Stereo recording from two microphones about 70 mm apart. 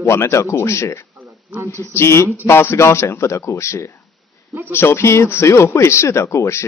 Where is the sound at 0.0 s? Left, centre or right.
Left.